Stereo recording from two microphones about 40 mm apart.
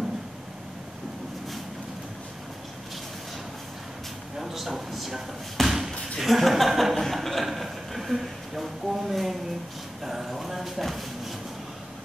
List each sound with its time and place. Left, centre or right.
4.4 s slam: centre
5.9 s chuckle: centre
10.0 s a sound: centre